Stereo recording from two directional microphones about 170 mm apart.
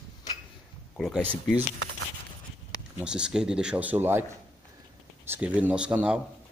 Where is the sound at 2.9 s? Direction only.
5° right (ahead or behind).